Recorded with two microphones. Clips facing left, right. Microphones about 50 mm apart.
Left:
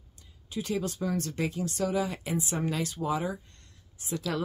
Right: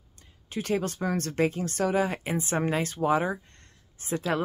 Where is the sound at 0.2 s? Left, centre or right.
Right.